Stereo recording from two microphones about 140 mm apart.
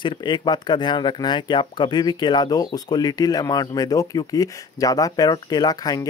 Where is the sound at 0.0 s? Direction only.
35° left (ahead or behind).